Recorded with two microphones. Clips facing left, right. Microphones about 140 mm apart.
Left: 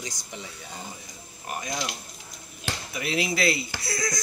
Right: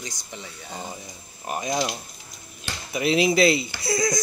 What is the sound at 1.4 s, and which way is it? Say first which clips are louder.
Speech: right 6 dB; 20° right (ahead or behind).